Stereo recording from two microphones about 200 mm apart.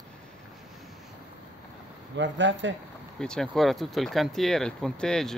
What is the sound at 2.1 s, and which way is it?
Speech, 65° right (ahead or behind).